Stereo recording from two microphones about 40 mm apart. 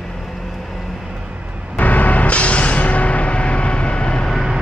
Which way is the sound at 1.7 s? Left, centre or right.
Left.